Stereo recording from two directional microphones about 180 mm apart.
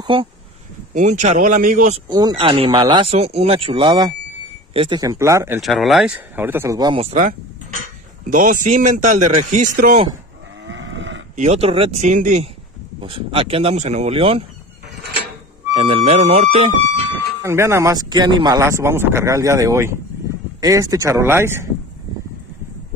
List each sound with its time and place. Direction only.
0.0 s speech: 25° right (ahead or behind)
0.9 s a man's voice: 45° right (ahead or behind)
2.0 s speech: 25° right (ahead or behind)
5.6 s speech: centre (ahead or behind); by 7.2 s 30° right (ahead or behind)
7.2 s a man's voice: 45° right (ahead or behind)
10.7 s livestock: 90° right
11.3 s speech: 35° right (ahead or behind)
13.0 s speech: 30° right (ahead or behind)
15.7 s speech: 30° right (ahead or behind)
17.4 s speech: 15° right (ahead or behind)